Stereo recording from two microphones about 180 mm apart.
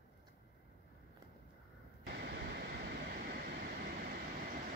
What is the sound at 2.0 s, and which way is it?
Vehicle, 65° right (ahead or behind).